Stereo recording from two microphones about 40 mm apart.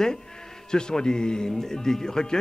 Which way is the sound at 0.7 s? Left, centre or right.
Centre.